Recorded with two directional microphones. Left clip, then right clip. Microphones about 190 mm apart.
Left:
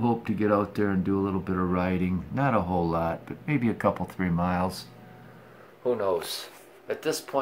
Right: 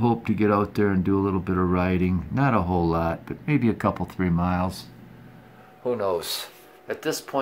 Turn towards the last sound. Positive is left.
turn(degrees=-15)  # may be behind; listen again after turning